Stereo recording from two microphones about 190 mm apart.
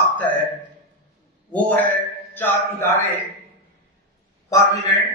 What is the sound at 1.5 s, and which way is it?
Speech, 10° left (ahead or behind).